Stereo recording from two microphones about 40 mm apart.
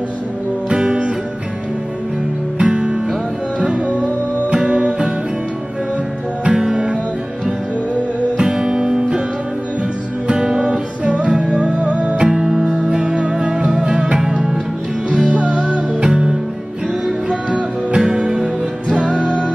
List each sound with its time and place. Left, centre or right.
0.7 s music: right
2.6 s music: right
6.4 s music: right
8.4 s music: centre
10.2 s music: centre
10.6 s music: right
12.3 s music: centre
14.1 s music: centre
15.0 s music: right
17.3 s music: right